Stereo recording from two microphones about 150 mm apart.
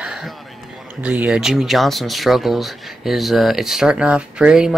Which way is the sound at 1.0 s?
10° right (ahead or behind).